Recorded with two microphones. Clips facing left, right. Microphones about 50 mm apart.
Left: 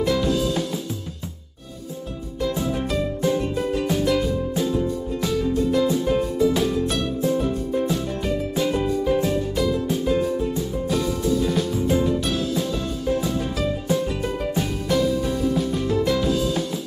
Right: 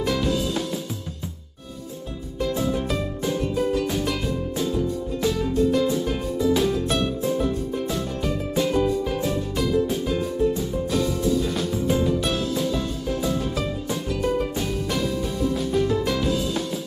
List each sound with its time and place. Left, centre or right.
0.0 s music: centre
2.9 s music: centre
3.5 s music: centre
3.9 s music: centre
7.4 s music: centre
14.4 s music: centre